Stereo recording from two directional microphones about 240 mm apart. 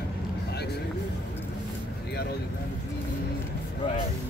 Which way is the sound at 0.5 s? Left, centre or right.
Left.